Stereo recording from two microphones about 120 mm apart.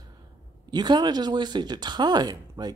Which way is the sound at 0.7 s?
40° right (ahead or behind).